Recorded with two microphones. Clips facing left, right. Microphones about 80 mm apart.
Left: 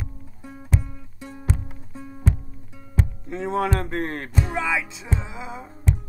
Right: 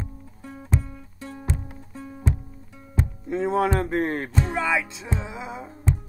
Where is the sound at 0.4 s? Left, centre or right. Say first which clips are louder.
Even; centre.